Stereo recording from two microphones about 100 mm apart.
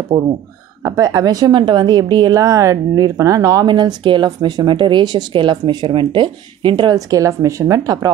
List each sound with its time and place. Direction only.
0.1 s a woman's voice: 50° right (ahead or behind)
0.8 s a woman's voice: 40° right (ahead or behind)
1.5 s a woman's voice: 50° right (ahead or behind); by 3.6 s 35° right (ahead or behind)
3.6 s a woman's voice: 50° right (ahead or behind)